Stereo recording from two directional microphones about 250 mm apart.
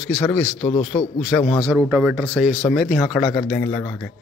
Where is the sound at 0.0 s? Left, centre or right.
Centre.